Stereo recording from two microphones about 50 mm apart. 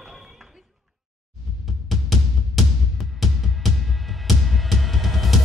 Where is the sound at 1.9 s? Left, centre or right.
Centre.